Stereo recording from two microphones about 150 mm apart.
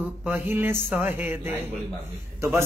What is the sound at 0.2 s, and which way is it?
Speech, 10° right (ahead or behind).